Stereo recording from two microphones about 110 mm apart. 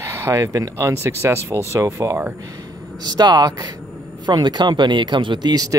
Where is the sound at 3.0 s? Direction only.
40° right (ahead or behind).